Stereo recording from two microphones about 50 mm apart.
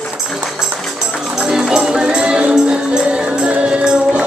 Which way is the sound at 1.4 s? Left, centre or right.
Centre.